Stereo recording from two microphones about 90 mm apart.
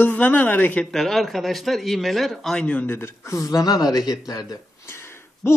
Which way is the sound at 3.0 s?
35° left (ahead or behind).